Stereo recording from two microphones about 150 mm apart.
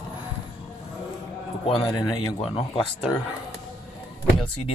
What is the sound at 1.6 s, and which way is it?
Speech, 35° left (ahead or behind).